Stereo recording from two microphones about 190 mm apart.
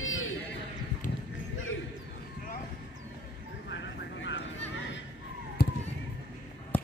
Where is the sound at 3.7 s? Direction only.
75° left (ahead or behind).